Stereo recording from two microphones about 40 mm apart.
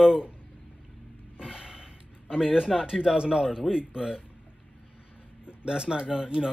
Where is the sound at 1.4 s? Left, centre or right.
Centre.